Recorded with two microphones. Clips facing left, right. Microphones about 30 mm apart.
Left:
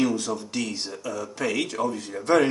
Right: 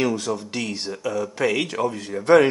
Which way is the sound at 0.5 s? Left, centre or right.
Centre.